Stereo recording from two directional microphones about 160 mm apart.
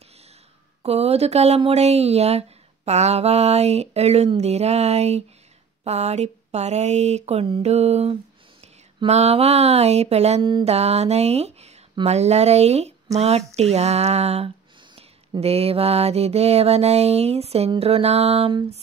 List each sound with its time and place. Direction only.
0.8 s speech: 40° right (ahead or behind)
5.9 s a sound: 45° right (ahead or behind)
9.0 s speech: 40° right (ahead or behind)